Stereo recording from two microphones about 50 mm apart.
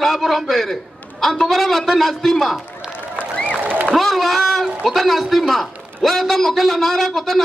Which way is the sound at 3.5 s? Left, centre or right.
Right.